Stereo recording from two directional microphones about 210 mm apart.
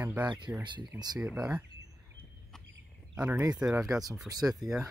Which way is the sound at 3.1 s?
10° right (ahead or behind).